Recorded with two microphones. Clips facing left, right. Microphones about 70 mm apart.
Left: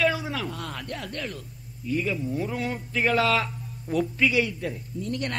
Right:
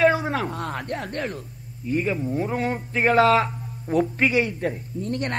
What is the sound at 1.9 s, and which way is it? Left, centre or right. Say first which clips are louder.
A man's voice: right 3 dB; right.